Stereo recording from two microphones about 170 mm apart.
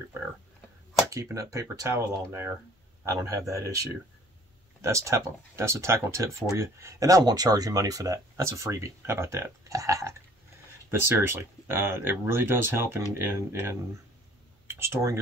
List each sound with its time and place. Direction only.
1.1 s speech: 20° right (ahead or behind)